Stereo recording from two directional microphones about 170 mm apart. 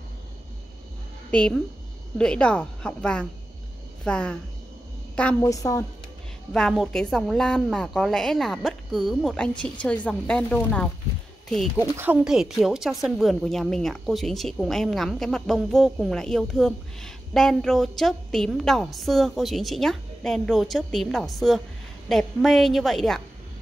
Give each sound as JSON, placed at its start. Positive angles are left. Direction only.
{"t": 1.3, "sound": "a woman's voice", "side_deg": 5}
{"t": 5.4, "sound": "a woman's voice", "side_deg": 20}
{"t": 6.5, "sound": "a woman's voice", "side_deg": 0}
{"t": 11.8, "sound": "a woman's voice", "side_deg": -10}